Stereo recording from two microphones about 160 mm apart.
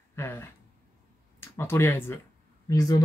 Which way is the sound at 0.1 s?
15° left (ahead or behind).